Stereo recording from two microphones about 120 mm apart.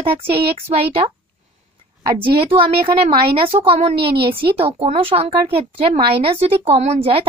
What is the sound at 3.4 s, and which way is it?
A woman's voice, 50° right (ahead or behind).